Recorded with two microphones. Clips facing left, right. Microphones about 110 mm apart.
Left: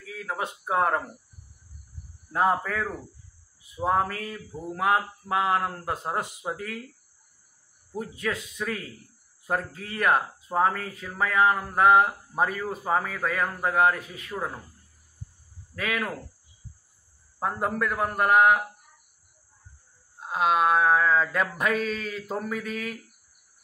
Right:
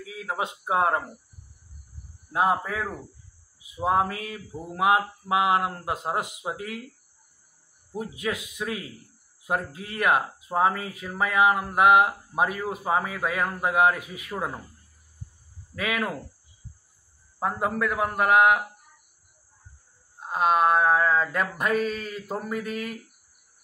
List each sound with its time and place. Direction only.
0.0 s speech: 15° right (ahead or behind)
2.3 s speech: 15° right (ahead or behind)
3.8 s speech: 15° right (ahead or behind)
7.9 s speech: 15° right (ahead or behind)
15.7 s speech: 10° right (ahead or behind)
17.4 s a sound: 5° right (ahead or behind)
20.2 s a sound: centre (ahead or behind)